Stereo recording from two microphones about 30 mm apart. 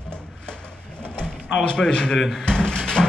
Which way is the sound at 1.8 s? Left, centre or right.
Centre.